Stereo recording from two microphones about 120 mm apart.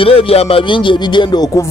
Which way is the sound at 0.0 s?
50° left (ahead or behind).